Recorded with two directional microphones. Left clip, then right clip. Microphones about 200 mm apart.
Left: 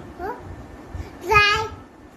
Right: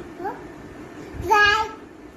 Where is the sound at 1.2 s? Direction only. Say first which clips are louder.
Even; 20° left (ahead or behind).